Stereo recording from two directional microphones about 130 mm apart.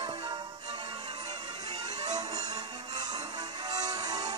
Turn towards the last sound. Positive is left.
turn(degrees=-30)  # may be behind; listen again after turning